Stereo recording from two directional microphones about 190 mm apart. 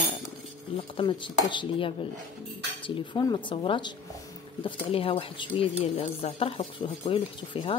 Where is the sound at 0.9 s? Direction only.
25° left (ahead or behind).